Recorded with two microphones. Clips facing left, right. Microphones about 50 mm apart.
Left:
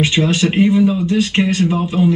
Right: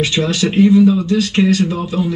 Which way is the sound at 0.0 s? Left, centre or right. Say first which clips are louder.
Left 1 dB; left.